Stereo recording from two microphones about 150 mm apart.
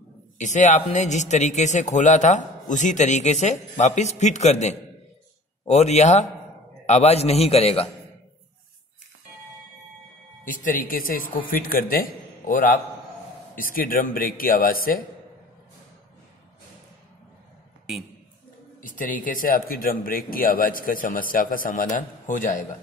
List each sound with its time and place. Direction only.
0.4 s a man's voice: 55° left (ahead or behind)
10.4 s speech: 65° left (ahead or behind)
18.8 s a man's voice: 65° left (ahead or behind)